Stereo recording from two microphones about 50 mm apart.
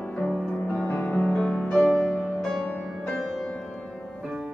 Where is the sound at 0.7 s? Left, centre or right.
Left.